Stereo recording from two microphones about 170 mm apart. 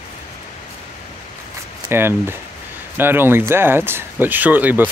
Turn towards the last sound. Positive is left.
turn(degrees=-10)  # may be behind; listen again after turning